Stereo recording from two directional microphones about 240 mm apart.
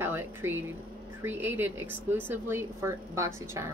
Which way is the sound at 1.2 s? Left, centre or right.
Centre.